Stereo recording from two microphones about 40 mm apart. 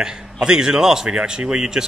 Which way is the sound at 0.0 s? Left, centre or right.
Centre.